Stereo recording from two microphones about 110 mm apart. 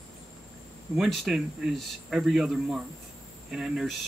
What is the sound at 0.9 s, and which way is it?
Speech, centre (ahead or behind).